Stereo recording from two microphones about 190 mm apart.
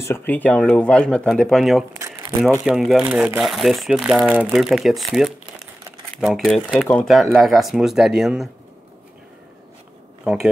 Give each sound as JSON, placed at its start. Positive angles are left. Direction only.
{"t": 0.0, "sound": "speech", "side_deg": 10}